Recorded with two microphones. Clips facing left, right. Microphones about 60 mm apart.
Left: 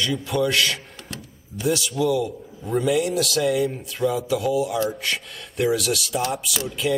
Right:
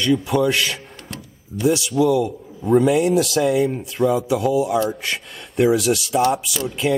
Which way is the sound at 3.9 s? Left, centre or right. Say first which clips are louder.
Right 4 dB; centre.